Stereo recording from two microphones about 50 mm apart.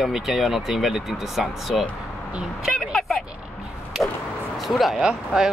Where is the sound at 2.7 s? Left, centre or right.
Centre.